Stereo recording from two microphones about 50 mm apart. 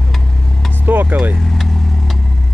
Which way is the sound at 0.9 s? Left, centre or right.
Right.